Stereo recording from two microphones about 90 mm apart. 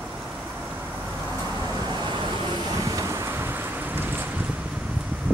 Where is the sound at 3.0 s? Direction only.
30° right (ahead or behind).